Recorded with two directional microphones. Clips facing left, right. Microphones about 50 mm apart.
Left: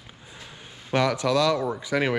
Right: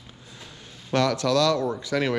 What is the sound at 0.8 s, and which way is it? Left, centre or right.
A man's voice, centre.